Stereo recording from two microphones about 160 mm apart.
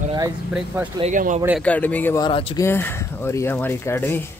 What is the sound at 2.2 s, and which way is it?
Speech, 35° left (ahead or behind).